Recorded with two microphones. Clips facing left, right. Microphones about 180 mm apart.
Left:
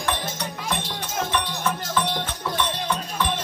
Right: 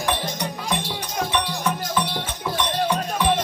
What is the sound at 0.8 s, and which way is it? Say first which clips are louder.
Music: right 2 dB; 10° right (ahead or behind).